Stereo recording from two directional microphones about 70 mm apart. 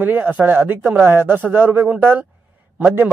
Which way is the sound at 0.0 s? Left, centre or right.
Right.